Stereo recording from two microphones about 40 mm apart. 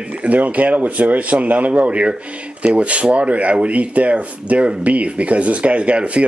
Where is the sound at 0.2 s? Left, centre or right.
Right.